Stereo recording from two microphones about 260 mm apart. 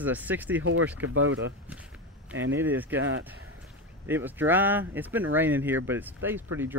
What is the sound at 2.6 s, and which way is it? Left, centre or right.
Speech, centre.